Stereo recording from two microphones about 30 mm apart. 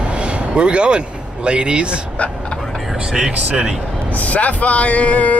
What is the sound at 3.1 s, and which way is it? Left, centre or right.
Speech, right.